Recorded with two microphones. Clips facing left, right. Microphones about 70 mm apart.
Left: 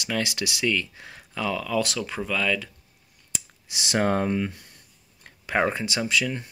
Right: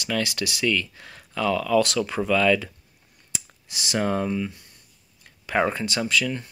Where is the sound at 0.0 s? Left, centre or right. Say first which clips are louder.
Right 1 dB; centre.